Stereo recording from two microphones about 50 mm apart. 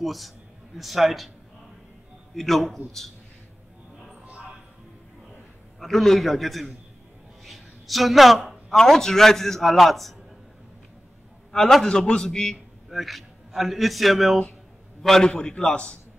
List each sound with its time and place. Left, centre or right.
0.0 s a man's voice: centre
2.3 s a man's voice: centre
5.8 s a man's voice: centre
11.5 s a man's voice: centre
12.9 s a man's voice: centre; by 16.0 s left